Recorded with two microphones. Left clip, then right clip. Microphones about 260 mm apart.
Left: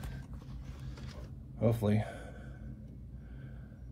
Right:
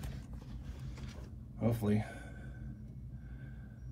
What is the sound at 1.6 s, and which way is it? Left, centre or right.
Speech, centre.